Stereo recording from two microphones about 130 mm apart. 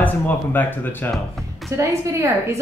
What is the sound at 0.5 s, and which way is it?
Speech, 15° left (ahead or behind).